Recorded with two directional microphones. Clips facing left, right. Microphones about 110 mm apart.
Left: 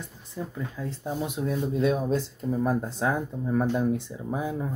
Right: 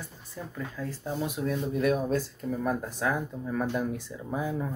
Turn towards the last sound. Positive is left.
turn(degrees=20)  # may be behind; listen again after turning